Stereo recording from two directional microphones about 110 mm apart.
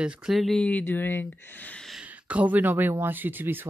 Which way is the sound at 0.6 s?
15° left (ahead or behind).